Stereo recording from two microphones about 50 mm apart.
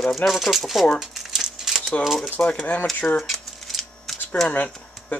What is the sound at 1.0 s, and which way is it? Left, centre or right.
Crumpling, centre.